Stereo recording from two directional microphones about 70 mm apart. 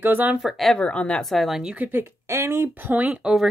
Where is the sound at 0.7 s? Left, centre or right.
Centre.